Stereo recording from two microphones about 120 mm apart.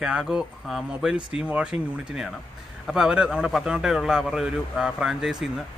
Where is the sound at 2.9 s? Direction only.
5° right (ahead or behind).